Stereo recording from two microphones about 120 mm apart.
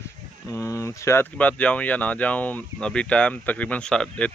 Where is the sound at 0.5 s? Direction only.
25° left (ahead or behind).